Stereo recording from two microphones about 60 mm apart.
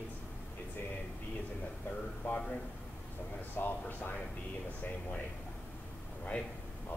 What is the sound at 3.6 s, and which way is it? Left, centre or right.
Speech, left.